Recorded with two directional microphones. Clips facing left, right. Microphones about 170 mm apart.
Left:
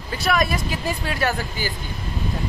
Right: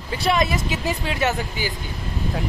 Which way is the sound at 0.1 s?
25° right (ahead or behind).